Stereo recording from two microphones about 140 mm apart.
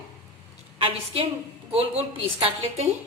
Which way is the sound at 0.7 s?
40° right (ahead or behind).